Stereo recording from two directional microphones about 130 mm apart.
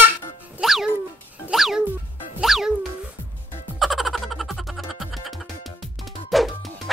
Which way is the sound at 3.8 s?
Centre (ahead or behind).